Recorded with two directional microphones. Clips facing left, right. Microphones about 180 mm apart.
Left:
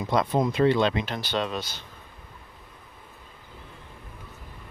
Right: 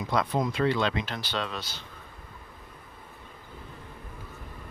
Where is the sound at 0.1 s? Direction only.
25° left (ahead or behind).